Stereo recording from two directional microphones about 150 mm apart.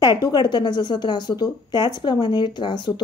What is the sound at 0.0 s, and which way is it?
Speech, 25° left (ahead or behind).